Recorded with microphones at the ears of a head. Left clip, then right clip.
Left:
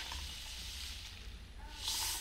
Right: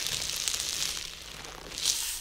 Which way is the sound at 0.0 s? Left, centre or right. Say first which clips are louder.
Right 13 dB; right.